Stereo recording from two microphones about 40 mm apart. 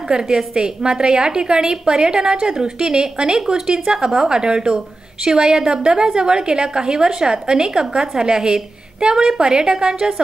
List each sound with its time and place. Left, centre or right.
0.1 s a woman's voice: centre